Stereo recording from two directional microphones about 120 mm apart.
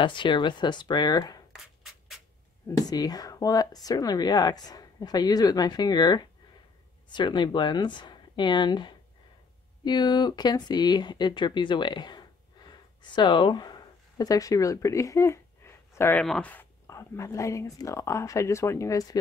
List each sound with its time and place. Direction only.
0.0 s speech: 40° left (ahead or behind)
1.5 s beatboxing: centre (ahead or behind)
2.7 s speech: 35° left (ahead or behind)
16.2 s speech: 10° left (ahead or behind); by 19.1 s 30° left (ahead or behind)